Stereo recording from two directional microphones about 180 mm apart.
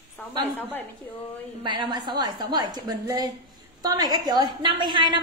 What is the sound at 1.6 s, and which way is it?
A woman's voice, 25° right (ahead or behind).